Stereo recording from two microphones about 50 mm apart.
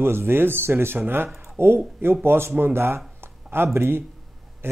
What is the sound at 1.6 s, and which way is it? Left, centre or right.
Speech, right.